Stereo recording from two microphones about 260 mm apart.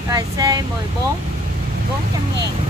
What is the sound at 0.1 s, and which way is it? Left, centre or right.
Speech, centre.